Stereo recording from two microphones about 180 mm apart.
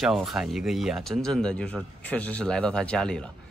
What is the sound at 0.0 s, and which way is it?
Speech, centre (ahead or behind).